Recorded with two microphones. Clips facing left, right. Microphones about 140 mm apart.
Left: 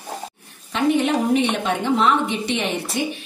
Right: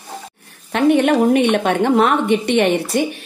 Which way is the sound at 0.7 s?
60° right (ahead or behind).